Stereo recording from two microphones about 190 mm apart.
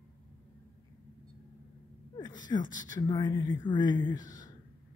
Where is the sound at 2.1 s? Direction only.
20° left (ahead or behind).